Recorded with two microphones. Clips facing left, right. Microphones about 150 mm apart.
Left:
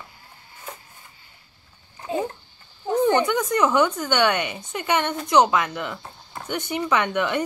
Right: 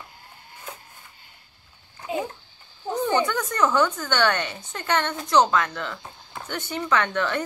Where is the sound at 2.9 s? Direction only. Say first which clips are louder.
Left 4 dB; 20° left (ahead or behind).